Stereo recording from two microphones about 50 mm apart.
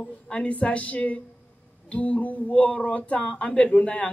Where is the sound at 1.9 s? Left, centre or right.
Left.